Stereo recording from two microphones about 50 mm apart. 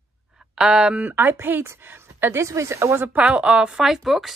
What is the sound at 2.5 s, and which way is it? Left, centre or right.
Speech, right.